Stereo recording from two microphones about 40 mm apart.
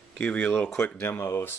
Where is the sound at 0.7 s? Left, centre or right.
Left.